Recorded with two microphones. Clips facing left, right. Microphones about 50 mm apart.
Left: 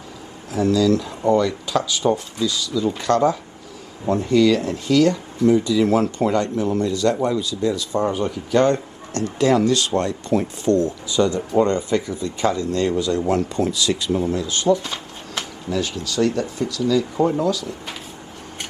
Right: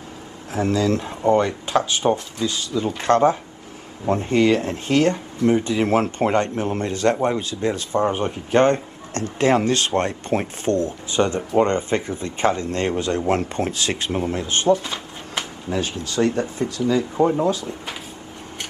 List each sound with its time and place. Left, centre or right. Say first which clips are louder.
0.5 s speech: left 3 dB; right
14.8 s speech: even; right